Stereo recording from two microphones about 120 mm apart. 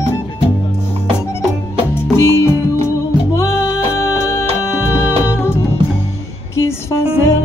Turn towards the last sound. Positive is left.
turn(degrees=20)  # may be behind; listen again after turning